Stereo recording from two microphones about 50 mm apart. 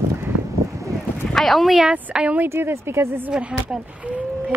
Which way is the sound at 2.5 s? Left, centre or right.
Right.